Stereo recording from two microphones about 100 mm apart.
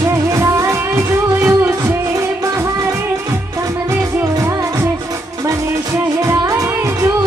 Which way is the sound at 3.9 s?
30° right (ahead or behind).